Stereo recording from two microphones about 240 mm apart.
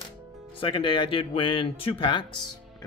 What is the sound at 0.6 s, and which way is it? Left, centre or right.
Speech, left.